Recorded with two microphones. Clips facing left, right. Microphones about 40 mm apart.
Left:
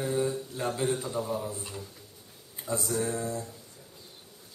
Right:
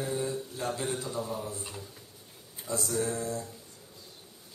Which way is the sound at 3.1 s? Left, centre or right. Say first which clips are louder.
Left 1 dB; centre.